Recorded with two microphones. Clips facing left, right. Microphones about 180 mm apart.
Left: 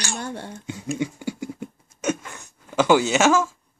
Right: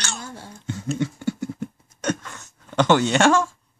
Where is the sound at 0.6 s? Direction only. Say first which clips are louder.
Right 2 dB; 15° left (ahead or behind).